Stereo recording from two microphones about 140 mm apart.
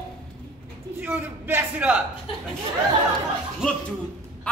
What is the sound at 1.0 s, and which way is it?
Speech, 10° right (ahead or behind).